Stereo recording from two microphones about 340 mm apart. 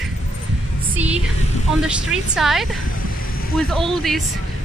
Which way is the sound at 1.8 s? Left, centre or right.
Centre.